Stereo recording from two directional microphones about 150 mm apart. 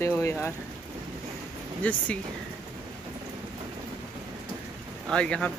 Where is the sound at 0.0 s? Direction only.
15° left (ahead or behind).